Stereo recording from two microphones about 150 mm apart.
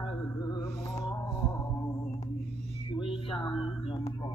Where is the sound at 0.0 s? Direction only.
25° left (ahead or behind).